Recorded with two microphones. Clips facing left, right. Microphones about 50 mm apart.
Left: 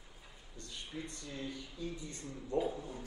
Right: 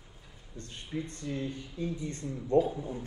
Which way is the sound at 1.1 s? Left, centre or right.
Right.